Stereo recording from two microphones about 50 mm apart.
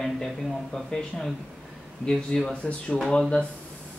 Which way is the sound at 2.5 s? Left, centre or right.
Left.